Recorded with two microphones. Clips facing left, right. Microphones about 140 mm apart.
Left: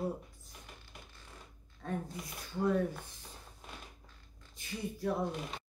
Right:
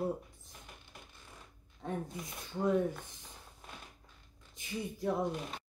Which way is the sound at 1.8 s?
20° right (ahead or behind).